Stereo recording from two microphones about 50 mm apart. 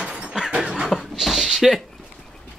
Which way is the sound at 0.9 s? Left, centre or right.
Centre.